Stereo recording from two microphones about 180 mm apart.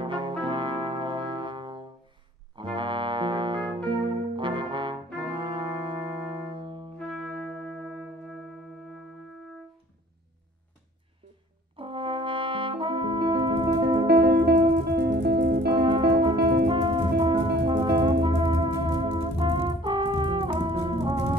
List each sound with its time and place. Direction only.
0.0 s brass instrument: 25° right (ahead or behind)
2.5 s music: 25° right (ahead or behind)
4.4 s brass instrument: 25° right (ahead or behind)
7.0 s music: 5° left (ahead or behind)
11.7 s brass instrument: 30° right (ahead or behind)
14.0 s music: 65° right (ahead or behind)
15.7 s music: 25° right (ahead or behind)
16.3 s music: 65° right (ahead or behind)
16.6 s music: 25° right (ahead or behind)